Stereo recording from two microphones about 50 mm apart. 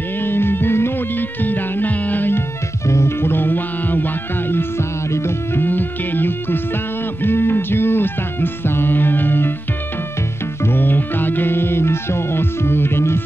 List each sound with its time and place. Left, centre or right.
0.2 s music: left
2.9 s music: left
10.6 s music: left